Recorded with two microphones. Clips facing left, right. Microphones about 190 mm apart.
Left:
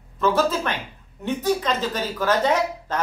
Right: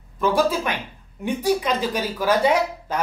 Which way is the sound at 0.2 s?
10° right (ahead or behind).